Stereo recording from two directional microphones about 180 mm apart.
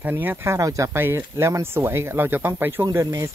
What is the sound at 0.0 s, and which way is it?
Speech, 10° right (ahead or behind).